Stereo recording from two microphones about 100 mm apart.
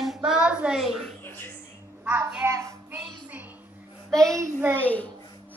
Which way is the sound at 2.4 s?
30° right (ahead or behind).